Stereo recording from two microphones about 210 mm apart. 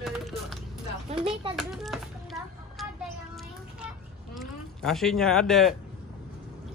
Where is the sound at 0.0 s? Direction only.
Centre (ahead or behind).